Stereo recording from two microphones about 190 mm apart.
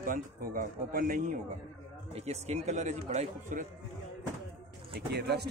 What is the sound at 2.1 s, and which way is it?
Speech, 35° right (ahead or behind).